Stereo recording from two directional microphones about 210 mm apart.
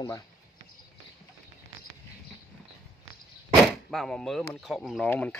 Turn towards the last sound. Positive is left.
turn(degrees=5)  # may be behind; listen again after turning